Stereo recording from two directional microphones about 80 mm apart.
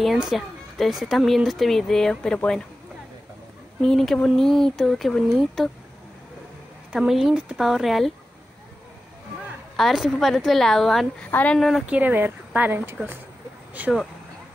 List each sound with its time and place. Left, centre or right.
0.2 s speech: centre
3.8 s speech: centre
6.9 s speech: centre
9.8 s speech: centre
11.2 s speech: left
11.5 s speech: centre
11.8 s speech: centre